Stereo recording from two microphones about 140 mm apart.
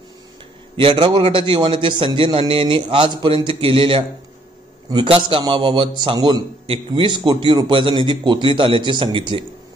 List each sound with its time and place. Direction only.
0.7 s a man's voice: 40° right (ahead or behind)